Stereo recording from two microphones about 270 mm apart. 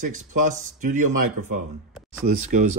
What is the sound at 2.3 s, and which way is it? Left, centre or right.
Speech, right.